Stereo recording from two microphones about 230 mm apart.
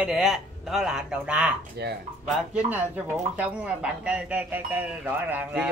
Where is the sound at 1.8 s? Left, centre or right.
Right.